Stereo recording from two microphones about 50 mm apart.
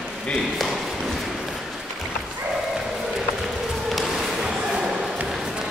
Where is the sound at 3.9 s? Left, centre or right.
Centre.